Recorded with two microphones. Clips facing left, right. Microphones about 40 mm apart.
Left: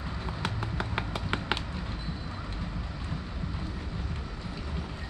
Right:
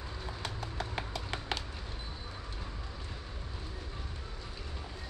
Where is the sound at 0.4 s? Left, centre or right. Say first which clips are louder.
Left 6 dB; left.